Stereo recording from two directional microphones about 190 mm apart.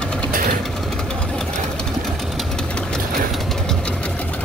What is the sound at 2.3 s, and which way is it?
Engine, 5° left (ahead or behind).